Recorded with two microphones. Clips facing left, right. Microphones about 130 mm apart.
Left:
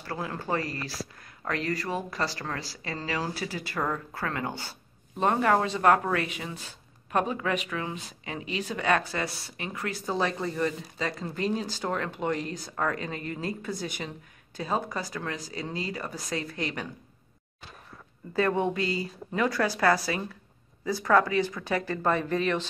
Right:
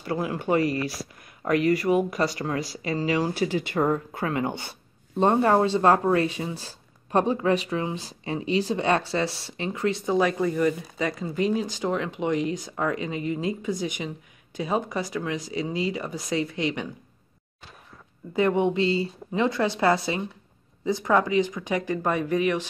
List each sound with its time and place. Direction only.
0.0 s speech: 15° right (ahead or behind)
10.1 s speech: 15° right (ahead or behind)
18.3 s speech: 20° right (ahead or behind)